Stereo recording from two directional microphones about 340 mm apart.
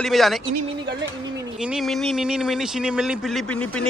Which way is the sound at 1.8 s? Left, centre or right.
Centre.